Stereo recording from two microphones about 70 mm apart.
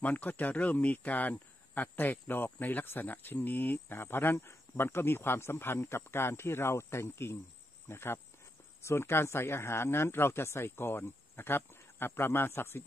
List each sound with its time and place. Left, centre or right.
0.0 s speech: left